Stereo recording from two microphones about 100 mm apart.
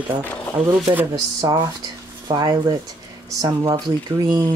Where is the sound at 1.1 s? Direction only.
40° right (ahead or behind).